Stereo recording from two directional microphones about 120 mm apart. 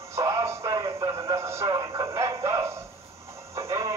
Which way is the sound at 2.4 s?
25° right (ahead or behind).